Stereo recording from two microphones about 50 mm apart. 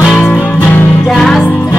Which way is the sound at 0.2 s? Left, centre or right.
Left.